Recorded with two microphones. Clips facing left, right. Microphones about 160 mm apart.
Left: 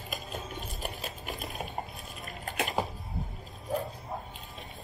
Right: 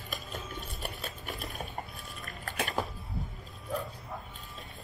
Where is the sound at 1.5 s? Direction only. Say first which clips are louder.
Left 3 dB; 30° left (ahead or behind).